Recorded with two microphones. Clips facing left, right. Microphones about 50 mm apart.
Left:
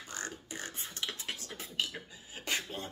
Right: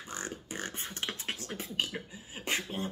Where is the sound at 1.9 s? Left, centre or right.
Right.